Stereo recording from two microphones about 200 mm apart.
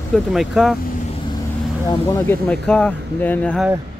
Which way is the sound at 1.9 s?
15° left (ahead or behind).